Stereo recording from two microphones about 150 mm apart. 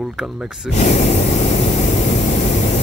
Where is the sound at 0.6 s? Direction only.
50° left (ahead or behind).